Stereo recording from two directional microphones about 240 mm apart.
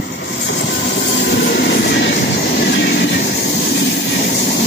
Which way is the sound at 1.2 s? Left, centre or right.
Left.